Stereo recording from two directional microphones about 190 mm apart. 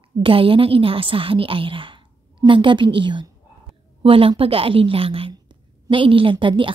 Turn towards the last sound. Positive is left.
turn(degrees=-25)  # may be behind; listen again after turning